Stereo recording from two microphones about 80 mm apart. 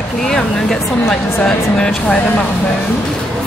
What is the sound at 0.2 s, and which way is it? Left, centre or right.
Speech, centre.